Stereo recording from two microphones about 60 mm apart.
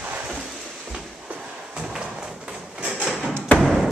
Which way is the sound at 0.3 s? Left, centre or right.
Centre.